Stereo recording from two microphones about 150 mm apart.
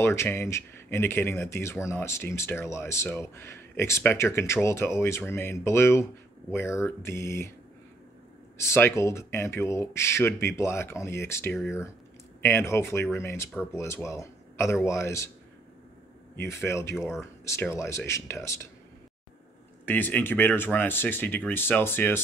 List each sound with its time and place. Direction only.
0.0 s speech: 15° left (ahead or behind)
8.5 s speech: 15° left (ahead or behind)
16.3 s speech: 20° left (ahead or behind)
19.9 s speech: 10° left (ahead or behind)